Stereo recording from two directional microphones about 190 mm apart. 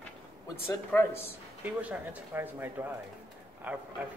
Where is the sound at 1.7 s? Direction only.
10° right (ahead or behind).